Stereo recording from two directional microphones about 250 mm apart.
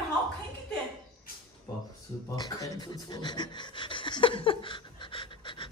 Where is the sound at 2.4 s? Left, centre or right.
Centre.